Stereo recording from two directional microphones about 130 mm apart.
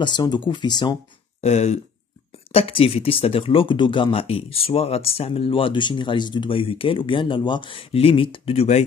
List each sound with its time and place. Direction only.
0.0 s speech: 35° left (ahead or behind)
1.4 s speech: 55° left (ahead or behind)